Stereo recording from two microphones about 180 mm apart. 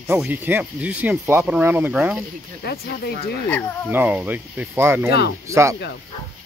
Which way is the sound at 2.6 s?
60° left (ahead or behind).